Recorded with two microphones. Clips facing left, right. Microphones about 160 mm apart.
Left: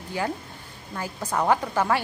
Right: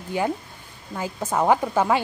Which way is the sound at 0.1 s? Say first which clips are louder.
Right 4 dB; 20° right (ahead or behind).